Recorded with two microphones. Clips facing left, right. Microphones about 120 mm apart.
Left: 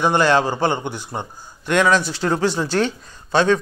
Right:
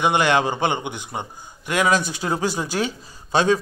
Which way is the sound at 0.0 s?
15° right (ahead or behind).